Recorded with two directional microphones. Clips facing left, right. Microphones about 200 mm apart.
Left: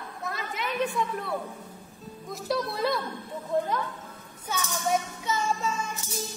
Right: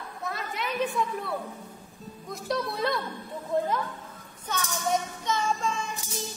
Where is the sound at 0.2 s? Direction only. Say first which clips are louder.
Even; centre (ahead or behind).